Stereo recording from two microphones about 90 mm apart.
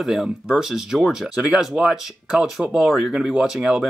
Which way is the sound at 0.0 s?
5° right (ahead or behind).